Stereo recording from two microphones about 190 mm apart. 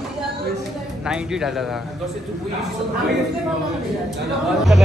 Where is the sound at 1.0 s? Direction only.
5° right (ahead or behind).